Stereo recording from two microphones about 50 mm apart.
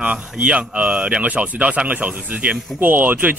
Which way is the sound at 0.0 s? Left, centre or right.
Right.